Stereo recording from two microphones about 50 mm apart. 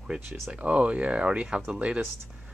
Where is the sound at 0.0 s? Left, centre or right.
Centre.